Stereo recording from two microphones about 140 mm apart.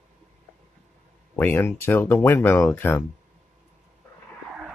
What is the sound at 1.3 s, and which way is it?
Speech, 15° left (ahead or behind).